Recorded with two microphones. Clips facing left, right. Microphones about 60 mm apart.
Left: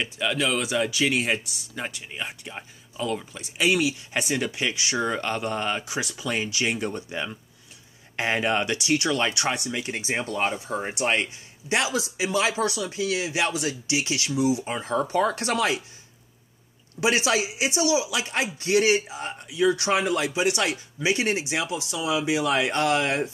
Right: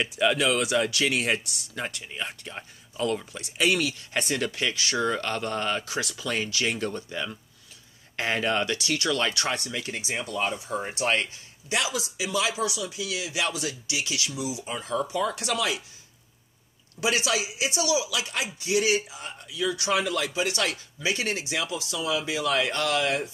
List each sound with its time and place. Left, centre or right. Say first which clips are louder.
0.0 s speech: right 2 dB; centre
9.8 s speech: left 3 dB; left
10.8 s speech: left 1 dB; centre
11.7 s speech: left 3 dB; left
15.0 s speech: left 4 dB; left
17.0 s speech: left 3 dB; left